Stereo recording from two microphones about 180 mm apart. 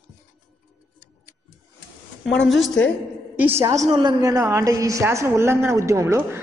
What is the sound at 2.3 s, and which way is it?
Speech, 90° left.